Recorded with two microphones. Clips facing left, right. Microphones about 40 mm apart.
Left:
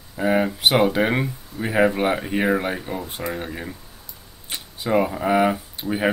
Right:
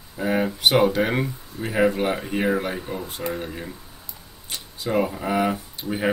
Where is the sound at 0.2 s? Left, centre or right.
Centre.